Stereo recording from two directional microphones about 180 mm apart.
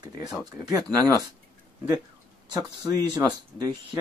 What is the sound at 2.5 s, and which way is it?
Speech, 20° right (ahead or behind).